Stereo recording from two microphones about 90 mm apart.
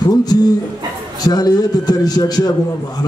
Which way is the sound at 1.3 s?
45° left (ahead or behind).